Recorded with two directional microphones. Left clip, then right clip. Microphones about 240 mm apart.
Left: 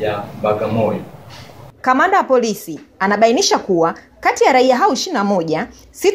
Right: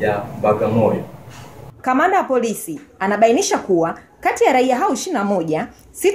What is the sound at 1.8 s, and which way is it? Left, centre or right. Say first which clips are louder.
A woman's voice: left 3 dB; centre.